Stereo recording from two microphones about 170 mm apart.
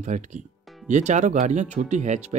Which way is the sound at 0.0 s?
45° right (ahead or behind).